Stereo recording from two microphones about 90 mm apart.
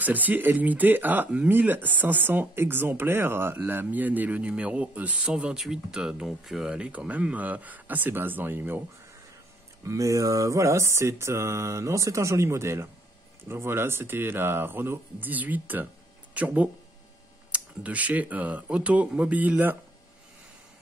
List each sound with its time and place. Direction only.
0.0 s speech: 20° right (ahead or behind)
9.8 s mantra: 35° right (ahead or behind)
13.5 s speech: 30° right (ahead or behind)